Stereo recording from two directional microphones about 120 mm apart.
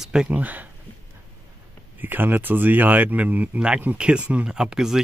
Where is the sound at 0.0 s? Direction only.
5° right (ahead or behind).